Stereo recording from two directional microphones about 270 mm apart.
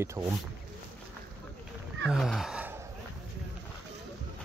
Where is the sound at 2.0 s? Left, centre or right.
Centre.